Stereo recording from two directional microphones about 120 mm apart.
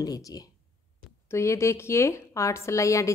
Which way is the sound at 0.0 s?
30° left (ahead or behind).